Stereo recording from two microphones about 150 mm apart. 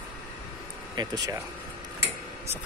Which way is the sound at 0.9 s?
25° right (ahead or behind).